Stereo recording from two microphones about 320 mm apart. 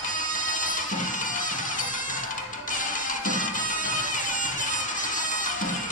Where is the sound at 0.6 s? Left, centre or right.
Left.